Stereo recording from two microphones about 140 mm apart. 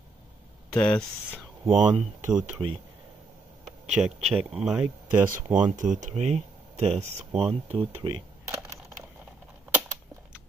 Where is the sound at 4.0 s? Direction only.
15° right (ahead or behind).